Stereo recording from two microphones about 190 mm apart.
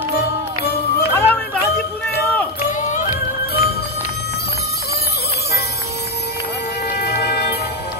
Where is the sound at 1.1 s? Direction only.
10° left (ahead or behind).